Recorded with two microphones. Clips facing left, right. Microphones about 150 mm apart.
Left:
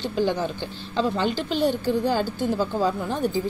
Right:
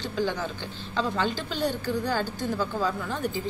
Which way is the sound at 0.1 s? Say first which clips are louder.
Left 4 dB; 15° left (ahead or behind).